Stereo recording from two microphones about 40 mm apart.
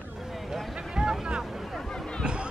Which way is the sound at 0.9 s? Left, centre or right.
Right.